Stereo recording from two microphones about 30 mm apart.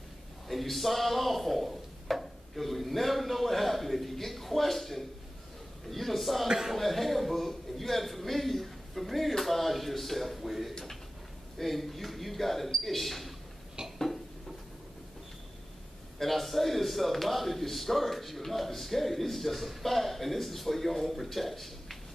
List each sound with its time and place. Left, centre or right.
0.5 s a man's voice: centre
13.8 s dishes: right
16.2 s speech: centre